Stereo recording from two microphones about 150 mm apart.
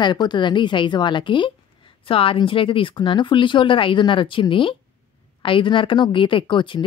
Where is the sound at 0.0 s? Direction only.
30° left (ahead or behind).